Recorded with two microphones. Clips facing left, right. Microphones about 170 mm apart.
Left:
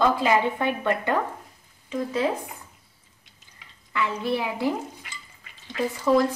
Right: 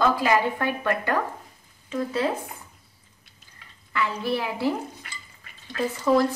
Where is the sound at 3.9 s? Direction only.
15° left (ahead or behind).